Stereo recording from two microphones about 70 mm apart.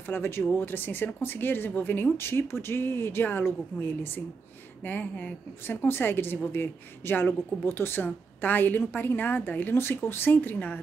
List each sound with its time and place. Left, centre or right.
0.0 s a woman's voice: left